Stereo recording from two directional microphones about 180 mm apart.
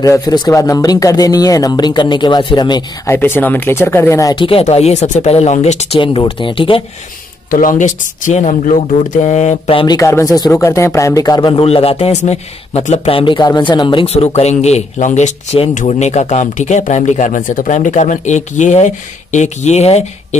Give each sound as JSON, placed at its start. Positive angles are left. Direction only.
{"t": 0.0, "sound": "speech", "side_deg": 20}
{"t": 3.2, "sound": "a man's voice", "side_deg": 10}
{"t": 7.5, "sound": "a man's voice", "side_deg": 45}
{"t": 9.9, "sound": "a man's voice", "side_deg": 15}